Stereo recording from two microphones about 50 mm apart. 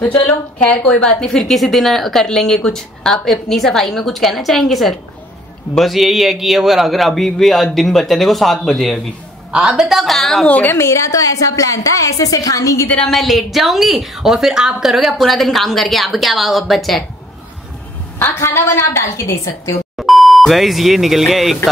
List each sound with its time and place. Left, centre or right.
0.6 s a woman's voice: left
1.2 s a woman's voice: centre
9.8 s a woman's voice: centre
10.7 s a woman's voice: left
13.1 s a woman's voice: centre
18.2 s a woman's voice: left
20.0 s speech: centre